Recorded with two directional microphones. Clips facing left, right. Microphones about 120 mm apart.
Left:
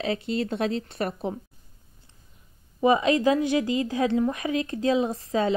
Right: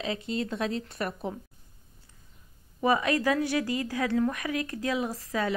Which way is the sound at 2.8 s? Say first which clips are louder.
Left 5 dB; 20° left (ahead or behind).